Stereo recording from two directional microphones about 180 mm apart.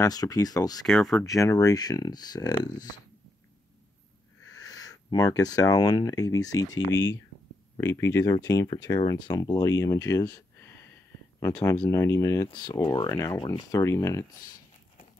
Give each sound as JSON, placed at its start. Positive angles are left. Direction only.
{"t": 0.0, "sound": "speech", "side_deg": 20}
{"t": 0.8, "sound": "speech", "side_deg": 0}
{"t": 1.2, "sound": "speech", "side_deg": 20}
{"t": 4.6, "sound": "speech", "side_deg": 20}